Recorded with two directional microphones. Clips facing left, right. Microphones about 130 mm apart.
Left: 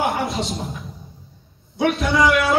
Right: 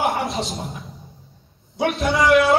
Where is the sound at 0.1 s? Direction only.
Centre (ahead or behind).